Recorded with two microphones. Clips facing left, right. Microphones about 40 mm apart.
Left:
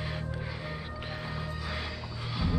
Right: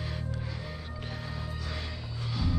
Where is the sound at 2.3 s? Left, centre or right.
Centre.